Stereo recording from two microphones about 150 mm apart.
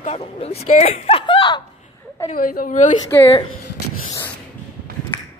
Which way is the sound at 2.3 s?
70° left (ahead or behind).